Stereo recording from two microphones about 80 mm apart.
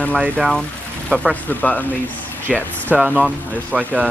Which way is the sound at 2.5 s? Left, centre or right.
Centre.